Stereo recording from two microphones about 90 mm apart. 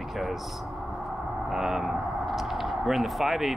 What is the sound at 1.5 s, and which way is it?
Speech, 5° right (ahead or behind).